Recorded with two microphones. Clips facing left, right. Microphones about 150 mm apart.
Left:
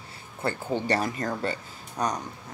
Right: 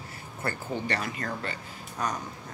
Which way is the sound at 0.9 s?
40° left (ahead or behind).